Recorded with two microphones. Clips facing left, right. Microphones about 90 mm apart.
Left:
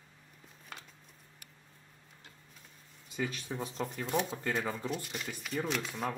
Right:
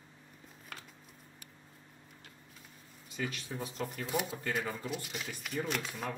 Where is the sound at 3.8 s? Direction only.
5° right (ahead or behind).